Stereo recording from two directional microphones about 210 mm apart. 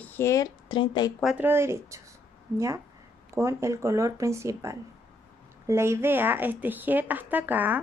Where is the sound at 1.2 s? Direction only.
10° right (ahead or behind).